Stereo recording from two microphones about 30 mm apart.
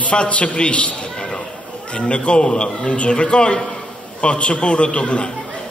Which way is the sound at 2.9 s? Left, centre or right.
Left.